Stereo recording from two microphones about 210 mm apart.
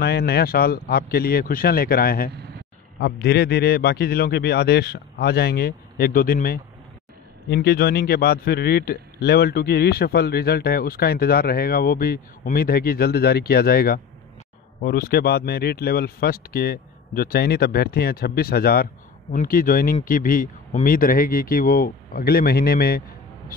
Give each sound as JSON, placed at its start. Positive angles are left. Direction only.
{"t": 0.0, "sound": "speech", "side_deg": 50}